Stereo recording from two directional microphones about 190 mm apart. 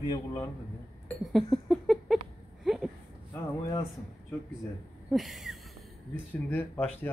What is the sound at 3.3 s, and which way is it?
Speech, 15° left (ahead or behind).